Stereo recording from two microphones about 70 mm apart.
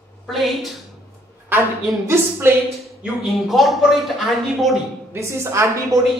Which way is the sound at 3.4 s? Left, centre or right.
Centre.